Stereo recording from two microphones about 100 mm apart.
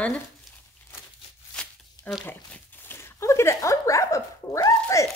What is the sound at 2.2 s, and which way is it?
Speech, 20° left (ahead or behind).